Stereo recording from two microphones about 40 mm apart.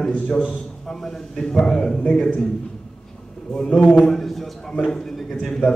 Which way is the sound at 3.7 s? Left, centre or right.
Left.